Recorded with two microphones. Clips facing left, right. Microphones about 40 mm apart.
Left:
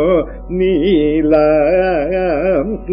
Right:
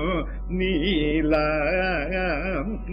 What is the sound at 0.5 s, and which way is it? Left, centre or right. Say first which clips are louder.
Music: left 11 dB; centre.